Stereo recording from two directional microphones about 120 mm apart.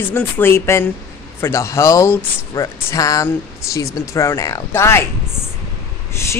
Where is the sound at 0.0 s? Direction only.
20° left (ahead or behind).